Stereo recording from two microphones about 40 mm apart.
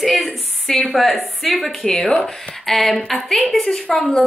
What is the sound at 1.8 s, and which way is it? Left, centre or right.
Speech, centre.